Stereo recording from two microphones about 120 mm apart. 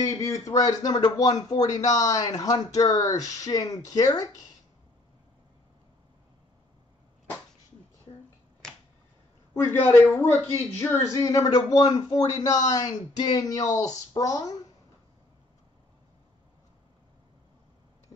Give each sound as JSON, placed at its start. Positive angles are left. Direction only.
{"t": 0.0, "sound": "speech", "side_deg": 30}
{"t": 8.6, "sound": "finger snapping", "side_deg": 5}
{"t": 9.5, "sound": "speech", "side_deg": 20}